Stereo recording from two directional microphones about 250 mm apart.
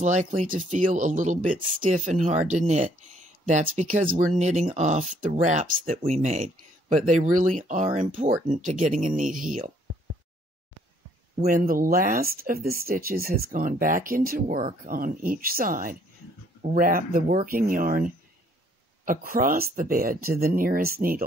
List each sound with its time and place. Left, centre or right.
0.0 s speech: right
11.3 s speech: right